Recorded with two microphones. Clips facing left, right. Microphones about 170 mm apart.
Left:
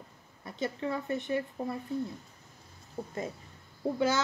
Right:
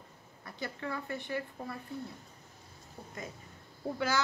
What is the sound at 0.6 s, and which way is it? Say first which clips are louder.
Speech: left 6 dB; 20° left (ahead or behind).